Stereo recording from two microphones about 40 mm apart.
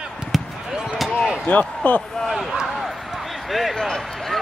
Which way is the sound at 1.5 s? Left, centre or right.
Left.